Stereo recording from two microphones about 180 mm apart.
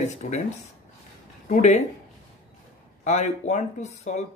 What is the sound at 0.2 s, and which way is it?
Speech, 45° left (ahead or behind).